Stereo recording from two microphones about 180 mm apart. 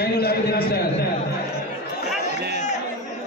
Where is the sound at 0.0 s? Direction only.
60° left (ahead or behind).